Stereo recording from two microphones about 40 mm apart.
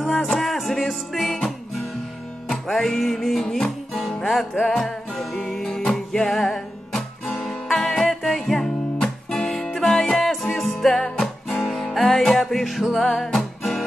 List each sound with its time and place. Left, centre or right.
0.2 s music: centre
8.6 s music: centre